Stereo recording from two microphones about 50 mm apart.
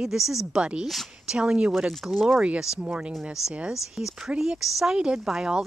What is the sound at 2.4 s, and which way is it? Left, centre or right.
Speech, centre.